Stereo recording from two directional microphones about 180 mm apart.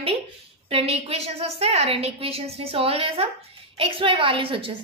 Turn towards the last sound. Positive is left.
turn(degrees=-30)  # may be behind; listen again after turning